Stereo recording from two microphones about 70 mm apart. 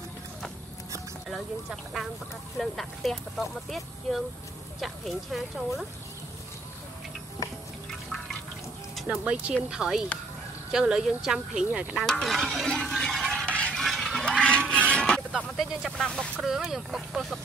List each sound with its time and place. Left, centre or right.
1.3 s speech: centre
9.1 s speech: centre
12.1 s speech: centre
13.0 s a sound: centre
13.5 s a sound: centre
13.7 s a sound: centre
14.9 s music: centre
15.5 s speech: centre
16.0 s speech: centre
16.4 s speech: centre